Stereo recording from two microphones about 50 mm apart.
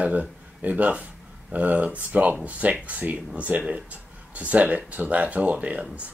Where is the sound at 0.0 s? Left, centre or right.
Right.